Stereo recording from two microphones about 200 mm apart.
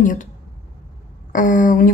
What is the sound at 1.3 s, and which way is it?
Speech, 40° left (ahead or behind).